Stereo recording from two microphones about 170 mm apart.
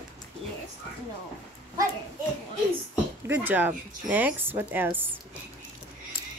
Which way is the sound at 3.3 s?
10° right (ahead or behind).